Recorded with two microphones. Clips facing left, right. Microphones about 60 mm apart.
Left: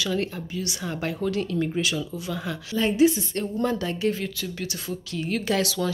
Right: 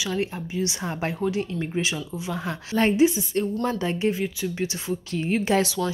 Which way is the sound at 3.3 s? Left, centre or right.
Centre.